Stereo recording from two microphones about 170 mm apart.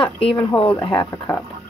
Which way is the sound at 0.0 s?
35° left (ahead or behind).